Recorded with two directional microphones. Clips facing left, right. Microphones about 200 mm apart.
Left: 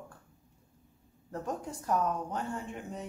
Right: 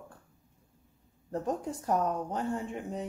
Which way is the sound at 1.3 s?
35° right (ahead or behind).